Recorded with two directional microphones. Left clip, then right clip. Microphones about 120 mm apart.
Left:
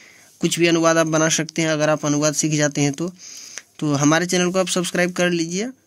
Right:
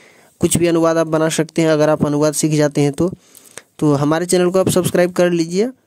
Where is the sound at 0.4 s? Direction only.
70° right (ahead or behind).